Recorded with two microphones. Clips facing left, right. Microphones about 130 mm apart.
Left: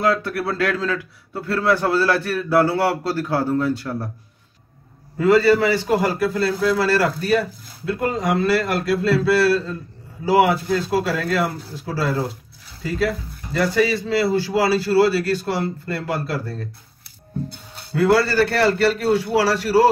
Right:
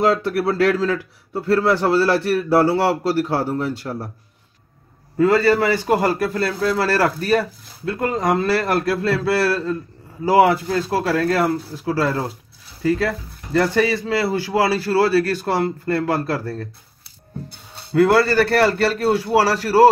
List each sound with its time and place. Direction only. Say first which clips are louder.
0.0 s a man's voice: right 3 dB; 25° right (ahead or behind)
5.4 s a man's voice: even; 50° right (ahead or behind)
13.5 s a man's voice: right 1 dB; 45° right (ahead or behind)
17.9 s a man's voice: right 2 dB; 50° right (ahead or behind)